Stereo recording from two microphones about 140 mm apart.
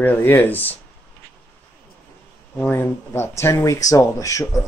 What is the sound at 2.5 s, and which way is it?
Speech, 15° left (ahead or behind).